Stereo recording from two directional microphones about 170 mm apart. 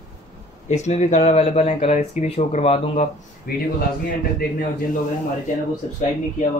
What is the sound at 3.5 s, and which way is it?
Speech, 60° left (ahead or behind).